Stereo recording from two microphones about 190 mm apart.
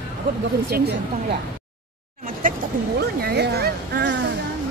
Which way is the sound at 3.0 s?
60° right (ahead or behind).